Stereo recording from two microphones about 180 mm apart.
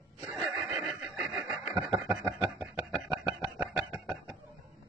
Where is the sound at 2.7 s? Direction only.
Centre (ahead or behind).